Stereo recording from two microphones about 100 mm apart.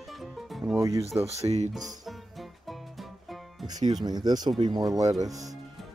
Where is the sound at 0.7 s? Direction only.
35° right (ahead or behind).